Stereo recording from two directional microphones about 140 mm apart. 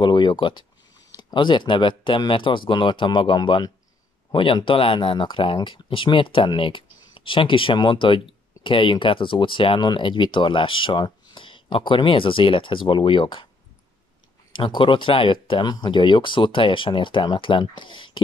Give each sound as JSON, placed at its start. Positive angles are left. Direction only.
{"t": 0.0, "sound": "speech", "side_deg": 35}
{"t": 14.5, "sound": "speech", "side_deg": 40}